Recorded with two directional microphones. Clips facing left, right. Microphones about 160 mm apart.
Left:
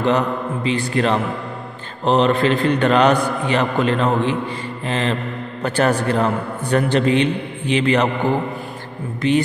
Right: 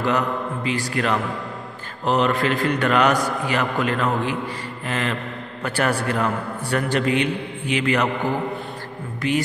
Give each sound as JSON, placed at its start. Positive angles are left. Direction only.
{"t": 0.9, "sound": "a man's voice", "side_deg": 30}